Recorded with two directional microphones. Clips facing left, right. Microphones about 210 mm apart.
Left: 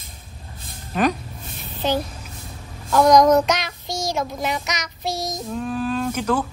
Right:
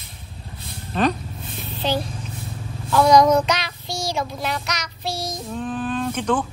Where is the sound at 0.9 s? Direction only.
10° left (ahead or behind).